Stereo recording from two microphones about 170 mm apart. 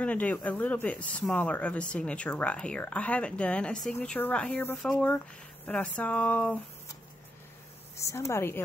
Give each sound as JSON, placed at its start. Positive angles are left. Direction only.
{"t": 0.0, "sound": "speech", "side_deg": 10}
{"t": 8.0, "sound": "speech", "side_deg": 15}